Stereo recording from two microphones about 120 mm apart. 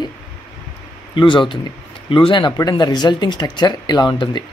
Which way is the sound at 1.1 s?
40° left (ahead or behind).